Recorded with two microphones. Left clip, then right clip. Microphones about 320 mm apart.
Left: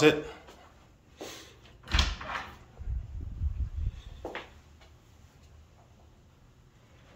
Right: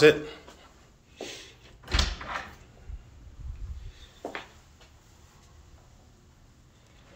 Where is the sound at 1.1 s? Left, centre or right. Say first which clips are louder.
Right 3 dB; centre.